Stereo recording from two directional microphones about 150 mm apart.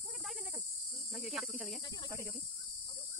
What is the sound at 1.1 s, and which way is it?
Speech, centre (ahead or behind).